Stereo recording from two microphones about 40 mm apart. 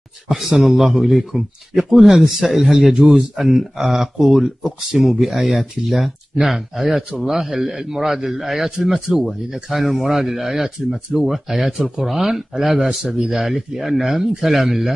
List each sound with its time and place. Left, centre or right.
0.3 s a man's voice: centre
3.1 s a man's voice: centre
5.0 s a man's voice: centre
13.0 s speech: centre
13.5 s speech: centre